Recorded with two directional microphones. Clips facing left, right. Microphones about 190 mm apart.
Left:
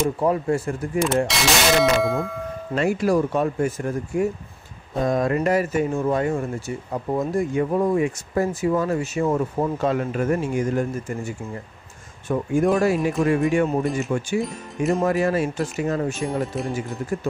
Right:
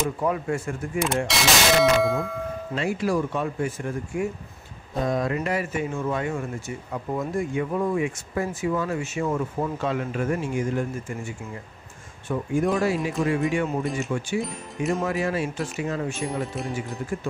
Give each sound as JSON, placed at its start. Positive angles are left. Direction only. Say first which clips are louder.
{"t": 0.2, "sound": "speech", "louder": "left 4 dB", "side_deg": 35}
{"t": 1.0, "sound": "clang", "louder": "left 3 dB", "side_deg": 0}
{"t": 2.7, "sound": "speech", "louder": "left 5 dB", "side_deg": 50}
{"t": 14.4, "sound": "clang", "louder": "left 4 dB", "side_deg": 0}
{"t": 15.0, "sound": "speech", "louder": "left 5 dB", "side_deg": 45}
{"t": 16.3, "sound": "clang", "louder": "left 4 dB", "side_deg": 0}